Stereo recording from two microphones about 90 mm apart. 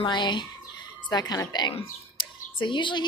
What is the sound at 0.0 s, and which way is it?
Speech, 55° left (ahead or behind).